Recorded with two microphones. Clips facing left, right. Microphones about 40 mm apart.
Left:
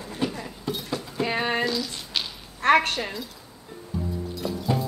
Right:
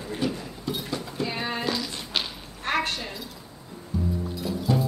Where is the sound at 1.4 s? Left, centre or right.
Left.